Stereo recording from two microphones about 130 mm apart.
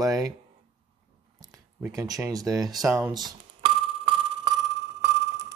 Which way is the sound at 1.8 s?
25° right (ahead or behind).